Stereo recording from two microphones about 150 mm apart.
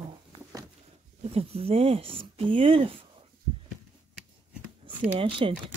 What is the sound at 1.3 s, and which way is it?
Speech, 40° right (ahead or behind).